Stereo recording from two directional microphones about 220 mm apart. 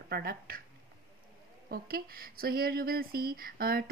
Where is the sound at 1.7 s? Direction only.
45° right (ahead or behind).